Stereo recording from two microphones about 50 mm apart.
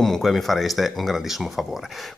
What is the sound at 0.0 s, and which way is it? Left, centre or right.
Speech, centre.